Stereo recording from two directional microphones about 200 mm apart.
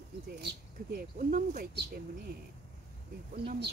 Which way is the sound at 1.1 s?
45° right (ahead or behind).